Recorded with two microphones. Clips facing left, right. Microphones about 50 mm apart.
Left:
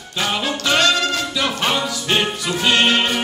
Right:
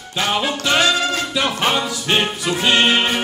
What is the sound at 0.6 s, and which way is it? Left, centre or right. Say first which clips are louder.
Music: left 1 dB; centre.